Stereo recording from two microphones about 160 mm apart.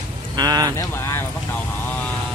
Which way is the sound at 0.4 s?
25° right (ahead or behind).